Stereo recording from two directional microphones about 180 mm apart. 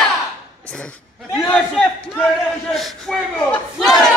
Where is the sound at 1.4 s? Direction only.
5° left (ahead or behind).